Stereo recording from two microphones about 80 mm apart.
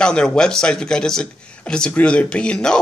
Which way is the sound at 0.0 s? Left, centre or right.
Centre.